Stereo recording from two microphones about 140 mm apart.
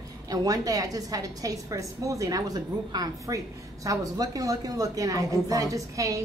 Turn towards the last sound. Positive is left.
turn(degrees=-25)  # may be behind; listen again after turning